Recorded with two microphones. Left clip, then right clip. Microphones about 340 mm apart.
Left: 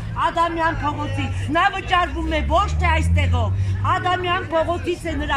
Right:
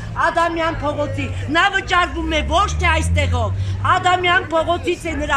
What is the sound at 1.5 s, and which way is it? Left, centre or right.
A man's voice, centre.